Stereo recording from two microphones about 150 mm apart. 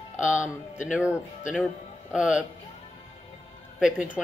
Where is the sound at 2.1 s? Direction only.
5° right (ahead or behind).